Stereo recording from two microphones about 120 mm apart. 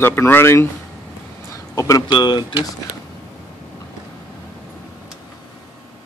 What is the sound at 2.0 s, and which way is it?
Speech, 35° left (ahead or behind).